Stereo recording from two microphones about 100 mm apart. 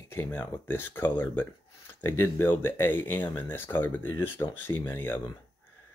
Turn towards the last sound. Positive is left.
turn(degrees=20)  # may be behind; listen again after turning